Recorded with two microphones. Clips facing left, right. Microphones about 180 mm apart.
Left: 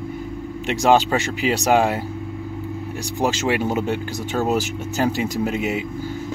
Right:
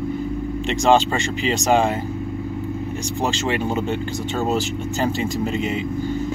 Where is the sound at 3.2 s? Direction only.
10° left (ahead or behind).